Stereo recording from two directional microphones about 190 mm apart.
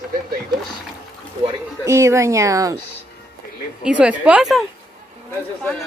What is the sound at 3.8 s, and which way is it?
A woman's voice, 5° right (ahead or behind).